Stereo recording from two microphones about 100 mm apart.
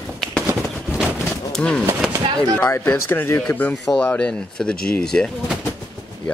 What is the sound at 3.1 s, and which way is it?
Speech, 25° left (ahead or behind).